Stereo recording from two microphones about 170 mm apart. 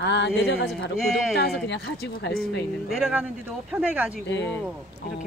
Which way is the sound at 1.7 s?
75° left (ahead or behind).